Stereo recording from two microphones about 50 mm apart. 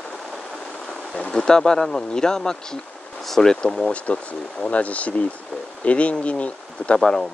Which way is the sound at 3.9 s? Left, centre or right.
Left.